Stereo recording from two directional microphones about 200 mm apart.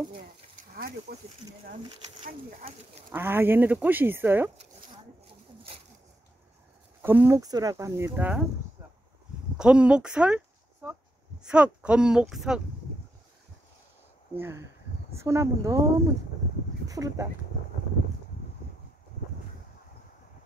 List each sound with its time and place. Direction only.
1.1 s speech: 50° right (ahead or behind)
2.2 s speech: 30° right (ahead or behind)
3.1 s speech: 10° right (ahead or behind)
7.0 s speech: 10° right (ahead or behind)
9.6 s speech: 5° right (ahead or behind)
14.3 s speech: 10° right (ahead or behind)